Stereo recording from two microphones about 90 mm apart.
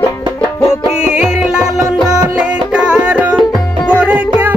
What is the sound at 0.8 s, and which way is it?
Music, 5° right (ahead or behind).